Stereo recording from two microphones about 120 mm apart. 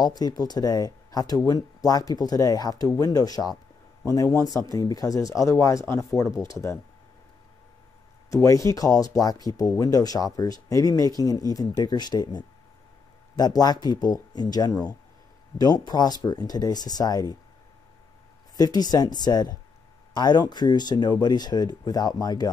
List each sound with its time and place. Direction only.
0.0 s speech: 35° left (ahead or behind)
8.3 s speech: 30° left (ahead or behind)
18.6 s speech: 35° left (ahead or behind)